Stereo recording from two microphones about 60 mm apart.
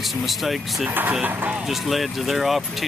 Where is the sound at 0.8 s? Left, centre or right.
Right.